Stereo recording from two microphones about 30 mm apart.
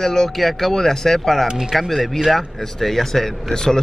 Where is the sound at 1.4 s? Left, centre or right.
Right.